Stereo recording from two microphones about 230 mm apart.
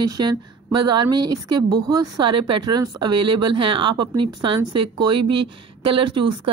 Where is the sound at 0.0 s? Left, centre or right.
Centre.